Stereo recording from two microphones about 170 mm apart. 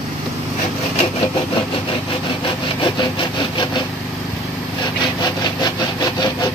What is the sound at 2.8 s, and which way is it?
Sawing, 30° left (ahead or behind).